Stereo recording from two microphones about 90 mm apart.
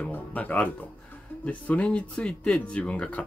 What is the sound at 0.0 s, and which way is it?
Speech, 15° left (ahead or behind).